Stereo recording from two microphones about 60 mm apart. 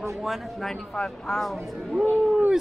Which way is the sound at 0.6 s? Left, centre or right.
Centre.